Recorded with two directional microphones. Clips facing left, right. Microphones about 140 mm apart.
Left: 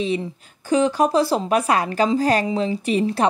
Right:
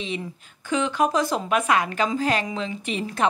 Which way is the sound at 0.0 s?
35° left (ahead or behind).